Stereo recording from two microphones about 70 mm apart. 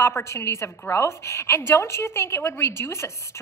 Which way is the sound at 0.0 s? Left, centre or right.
Left.